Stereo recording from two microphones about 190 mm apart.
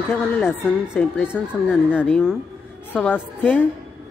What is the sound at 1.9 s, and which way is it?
A woman's voice, 5° left (ahead or behind).